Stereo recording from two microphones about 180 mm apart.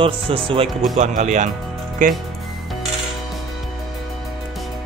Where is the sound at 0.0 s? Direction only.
30° right (ahead or behind).